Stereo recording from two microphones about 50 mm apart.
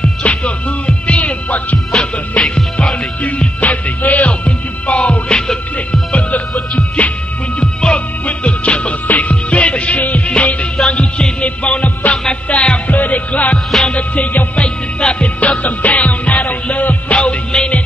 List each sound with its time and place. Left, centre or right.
0.2 s music: left
2.5 s music: centre
3.2 s music: left